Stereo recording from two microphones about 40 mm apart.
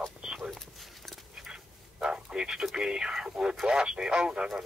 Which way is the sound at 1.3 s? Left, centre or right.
Centre.